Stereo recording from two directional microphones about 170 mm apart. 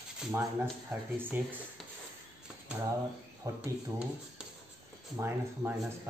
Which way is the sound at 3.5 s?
20° right (ahead or behind).